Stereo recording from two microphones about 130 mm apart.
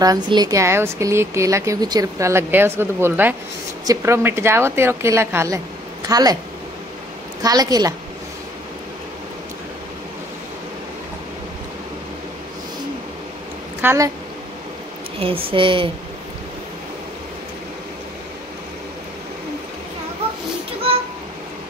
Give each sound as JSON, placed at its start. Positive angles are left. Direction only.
{"t": 0.0, "sound": "speech", "side_deg": -30}
{"t": 7.4, "sound": "speech", "side_deg": -30}
{"t": 13.7, "sound": "a woman's voice", "side_deg": -20}
{"t": 15.1, "sound": "speech", "side_deg": -45}